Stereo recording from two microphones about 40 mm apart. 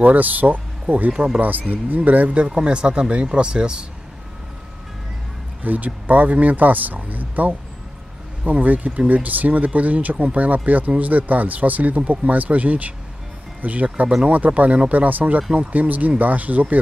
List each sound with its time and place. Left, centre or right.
0.0 s speech: right
1.1 s speech: centre
1.4 s speech: right
2.4 s speech: right
5.6 s speech: right